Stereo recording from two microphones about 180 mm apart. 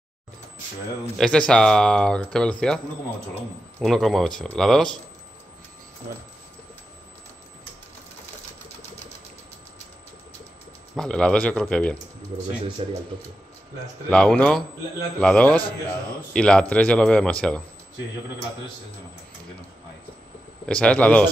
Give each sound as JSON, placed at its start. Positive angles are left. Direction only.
{"t": 1.1, "sound": "speech", "side_deg": 5}
{"t": 3.8, "sound": "speech", "side_deg": 0}
{"t": 11.0, "sound": "speech", "side_deg": 5}
{"t": 12.8, "sound": "speech", "side_deg": -35}
{"t": 14.1, "sound": "speech", "side_deg": 5}
{"t": 15.6, "sound": "a man's voice", "side_deg": 25}
{"t": 16.3, "sound": "speech", "side_deg": 5}
{"t": 20.6, "sound": "speech", "side_deg": 5}